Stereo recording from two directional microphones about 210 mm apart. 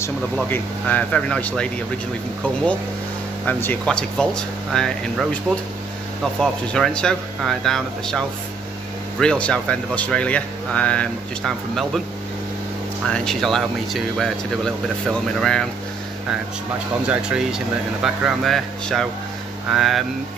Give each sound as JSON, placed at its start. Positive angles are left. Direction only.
{"t": 0.0, "sound": "speech", "side_deg": 10}
{"t": 3.4, "sound": "speech", "side_deg": 5}
{"t": 6.4, "sound": "speech", "side_deg": 0}
{"t": 9.2, "sound": "speech", "side_deg": 5}
{"t": 13.0, "sound": "speech", "side_deg": 5}
{"t": 17.1, "sound": "speech", "side_deg": -5}